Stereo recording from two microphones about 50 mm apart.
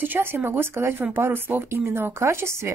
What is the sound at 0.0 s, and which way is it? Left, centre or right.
Speech, right.